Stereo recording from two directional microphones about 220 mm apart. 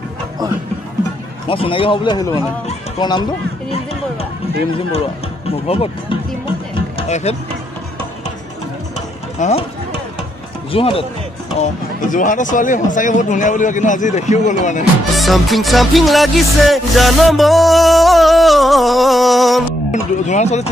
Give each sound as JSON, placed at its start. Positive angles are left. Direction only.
{"t": 1.5, "sound": "a man's voice", "side_deg": 25}
{"t": 3.7, "sound": "a sound", "side_deg": 30}
{"t": 5.7, "sound": "a man's voice", "side_deg": 25}
{"t": 6.7, "sound": "music", "side_deg": 30}
{"t": 9.4, "sound": "a man's voice", "side_deg": 30}
{"t": 10.7, "sound": "a man's voice", "side_deg": 25}
{"t": 11.6, "sound": "speech", "side_deg": 35}
{"t": 15.1, "sound": "music", "side_deg": 0}
{"t": 19.9, "sound": "speech", "side_deg": 30}